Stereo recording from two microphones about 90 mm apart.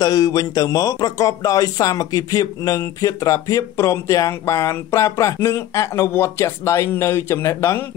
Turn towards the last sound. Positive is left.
turn(degrees=30)  # may be behind; listen again after turning